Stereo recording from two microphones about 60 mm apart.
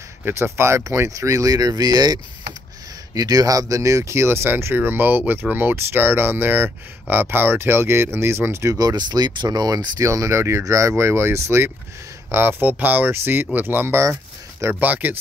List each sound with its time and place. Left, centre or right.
0.2 s speech: right
0.8 s speech: right
3.2 s speech: right
8.7 s speech: right